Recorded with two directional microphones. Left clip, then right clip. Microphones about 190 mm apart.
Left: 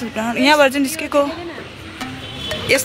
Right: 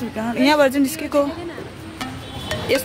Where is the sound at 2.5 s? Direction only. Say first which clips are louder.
Left 3 dB; 5° right (ahead or behind).